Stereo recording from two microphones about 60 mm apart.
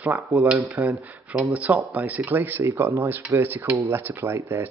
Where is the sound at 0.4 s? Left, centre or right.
Right.